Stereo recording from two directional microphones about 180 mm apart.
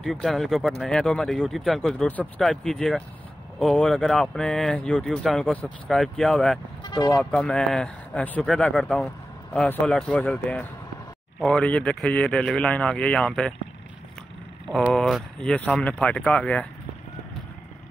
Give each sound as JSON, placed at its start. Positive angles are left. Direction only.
{"t": 0.0, "sound": "speech", "side_deg": 0}
{"t": 6.8, "sound": "vehicle", "side_deg": 20}
{"t": 7.2, "sound": "speech", "side_deg": 5}
{"t": 14.9, "sound": "speech", "side_deg": 0}